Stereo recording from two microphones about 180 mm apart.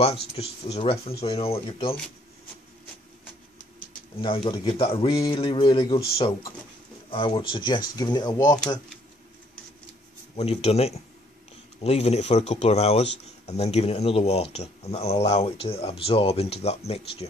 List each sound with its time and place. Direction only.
0.0 s speech: 30° left (ahead or behind)
4.2 s a man's voice: 30° left (ahead or behind)
10.3 s speech: 35° left (ahead or behind)